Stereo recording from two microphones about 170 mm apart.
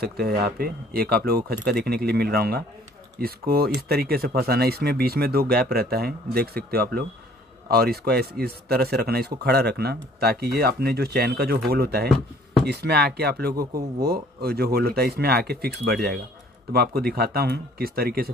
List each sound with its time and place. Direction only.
0.0 s speech: 65° right (ahead or behind)